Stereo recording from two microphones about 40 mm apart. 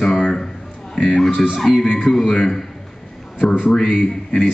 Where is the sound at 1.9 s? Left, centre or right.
Centre.